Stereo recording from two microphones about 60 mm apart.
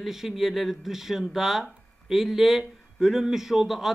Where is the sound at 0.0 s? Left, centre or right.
Centre.